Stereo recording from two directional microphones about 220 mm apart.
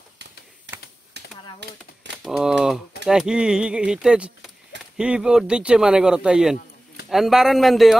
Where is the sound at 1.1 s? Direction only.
50° right (ahead or behind).